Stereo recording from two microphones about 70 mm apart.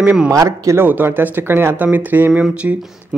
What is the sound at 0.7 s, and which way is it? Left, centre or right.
A man's voice, right.